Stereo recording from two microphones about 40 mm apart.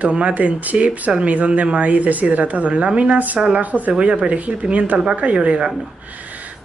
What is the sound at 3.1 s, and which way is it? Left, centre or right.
A woman's voice, right.